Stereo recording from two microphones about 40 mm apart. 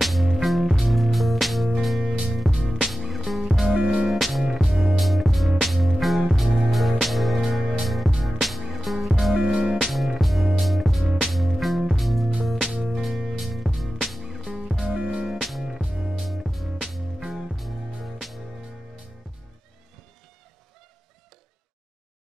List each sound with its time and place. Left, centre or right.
0.0 s music: centre
2.0 s music: centre
2.3 s music: centre
9.8 s music: centre
14.9 s music: centre
15.2 s music: centre